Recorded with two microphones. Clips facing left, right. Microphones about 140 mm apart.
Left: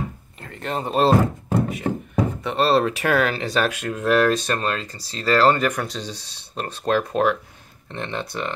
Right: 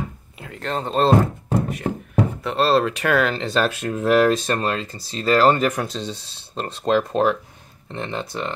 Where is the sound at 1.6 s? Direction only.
Centre (ahead or behind).